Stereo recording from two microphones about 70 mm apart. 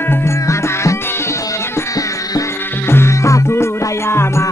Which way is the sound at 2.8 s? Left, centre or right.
Left.